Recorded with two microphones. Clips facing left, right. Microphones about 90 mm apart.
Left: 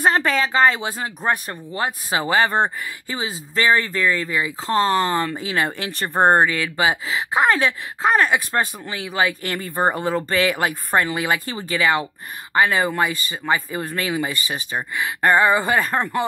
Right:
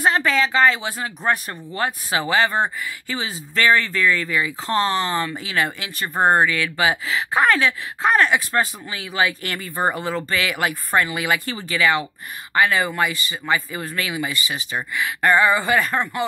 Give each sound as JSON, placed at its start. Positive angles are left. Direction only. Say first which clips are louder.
{"t": 0.0, "sound": "speech", "louder": "even", "side_deg": 45}